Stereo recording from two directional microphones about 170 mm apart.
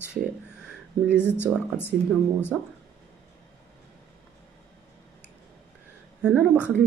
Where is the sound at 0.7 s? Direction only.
5° right (ahead or behind).